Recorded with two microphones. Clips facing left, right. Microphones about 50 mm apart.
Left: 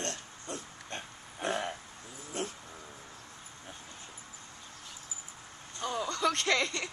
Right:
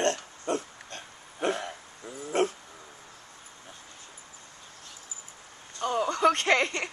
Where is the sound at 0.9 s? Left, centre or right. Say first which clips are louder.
Left 2 dB; left.